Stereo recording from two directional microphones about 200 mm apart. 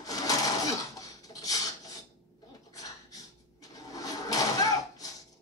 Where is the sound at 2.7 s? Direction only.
15° left (ahead or behind).